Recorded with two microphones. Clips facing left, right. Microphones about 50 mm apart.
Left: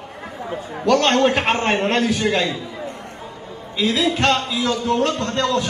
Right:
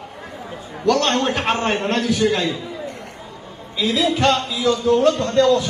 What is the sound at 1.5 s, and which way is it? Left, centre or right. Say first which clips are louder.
Speech: left 1 dB; left.